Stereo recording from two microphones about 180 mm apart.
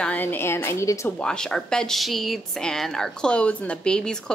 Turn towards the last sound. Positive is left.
turn(degrees=5)  # may be behind; listen again after turning